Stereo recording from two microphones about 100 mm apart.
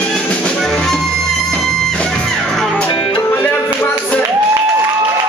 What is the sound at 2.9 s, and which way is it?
Music, 50° left (ahead or behind).